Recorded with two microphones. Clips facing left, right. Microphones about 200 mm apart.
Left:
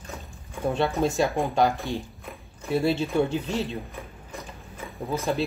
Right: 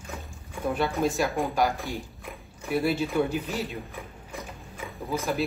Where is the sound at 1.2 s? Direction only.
Centre (ahead or behind).